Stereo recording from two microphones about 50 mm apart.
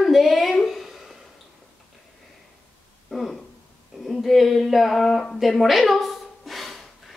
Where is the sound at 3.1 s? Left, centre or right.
Centre.